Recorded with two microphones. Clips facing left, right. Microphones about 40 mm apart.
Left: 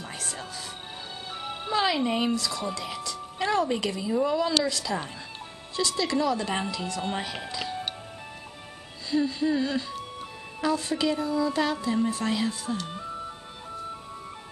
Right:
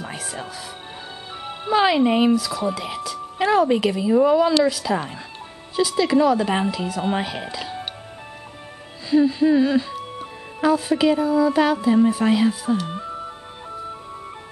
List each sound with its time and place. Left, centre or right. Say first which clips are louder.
0.0 s music: right 5 dB; centre
1.7 s speech: right 8 dB; right
2.3 s speech: right 7 dB; centre
9.1 s speech: right 9 dB; centre